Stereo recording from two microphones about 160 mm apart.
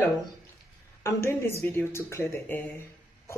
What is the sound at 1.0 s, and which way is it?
A woman's voice, 15° left (ahead or behind).